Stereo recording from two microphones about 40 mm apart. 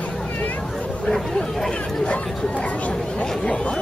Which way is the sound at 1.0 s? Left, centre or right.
Centre.